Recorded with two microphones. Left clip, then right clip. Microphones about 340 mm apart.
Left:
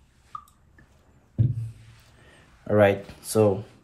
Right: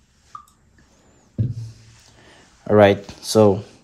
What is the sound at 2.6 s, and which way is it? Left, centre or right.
Speech, right.